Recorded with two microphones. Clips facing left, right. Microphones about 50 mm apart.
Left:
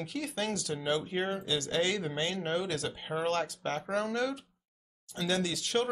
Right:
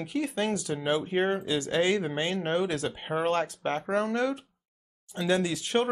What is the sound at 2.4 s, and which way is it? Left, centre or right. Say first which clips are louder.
Speech: right 7 dB; centre.